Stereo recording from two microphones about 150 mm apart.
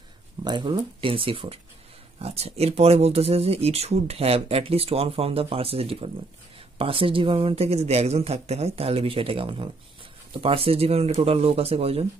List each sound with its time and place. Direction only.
0.4 s speech: 30° right (ahead or behind)